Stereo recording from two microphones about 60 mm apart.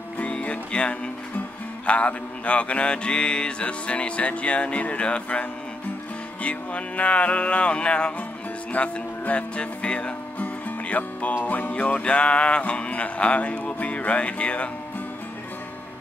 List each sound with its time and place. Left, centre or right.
0.2 s music: left
8.7 s speech: left
11.4 s music: left